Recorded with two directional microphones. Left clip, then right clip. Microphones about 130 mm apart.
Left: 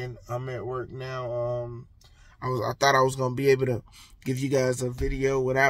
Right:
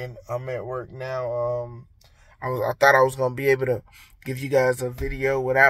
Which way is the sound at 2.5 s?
20° left (ahead or behind).